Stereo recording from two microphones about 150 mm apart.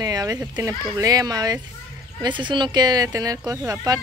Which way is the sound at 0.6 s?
25° right (ahead or behind).